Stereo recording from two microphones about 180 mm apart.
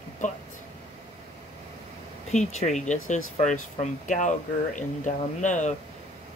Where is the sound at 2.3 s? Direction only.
40° left (ahead or behind).